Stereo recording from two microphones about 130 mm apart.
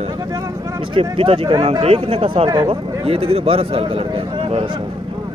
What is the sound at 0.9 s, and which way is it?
Speech, 45° right (ahead or behind).